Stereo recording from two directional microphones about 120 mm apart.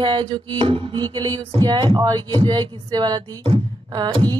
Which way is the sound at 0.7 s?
50° right (ahead or behind).